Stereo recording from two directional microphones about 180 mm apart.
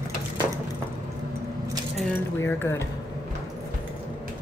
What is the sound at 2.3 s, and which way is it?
Speech, 15° left (ahead or behind).